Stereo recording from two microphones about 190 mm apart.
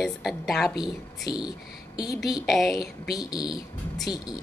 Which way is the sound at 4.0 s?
5° right (ahead or behind).